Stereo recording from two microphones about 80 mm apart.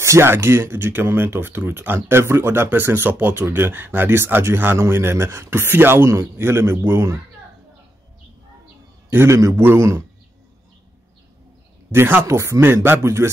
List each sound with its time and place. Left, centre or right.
0.0 s a man's voice: right
9.1 s a man's voice: right
11.9 s a man's voice: right